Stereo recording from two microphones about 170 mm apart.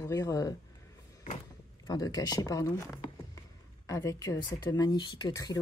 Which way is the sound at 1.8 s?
25° left (ahead or behind).